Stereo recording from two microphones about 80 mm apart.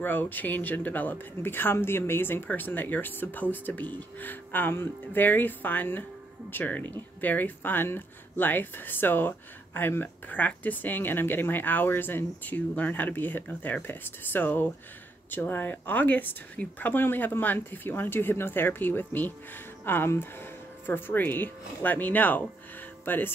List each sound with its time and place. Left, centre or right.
0.0 s speech: left